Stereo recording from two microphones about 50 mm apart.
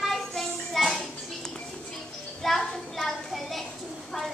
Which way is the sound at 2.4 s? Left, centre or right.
Centre.